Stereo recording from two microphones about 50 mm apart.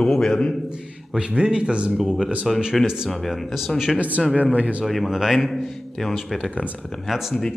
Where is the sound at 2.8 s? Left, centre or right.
Centre.